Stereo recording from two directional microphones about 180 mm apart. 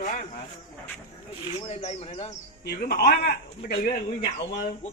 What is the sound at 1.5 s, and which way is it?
Speech, 35° left (ahead or behind).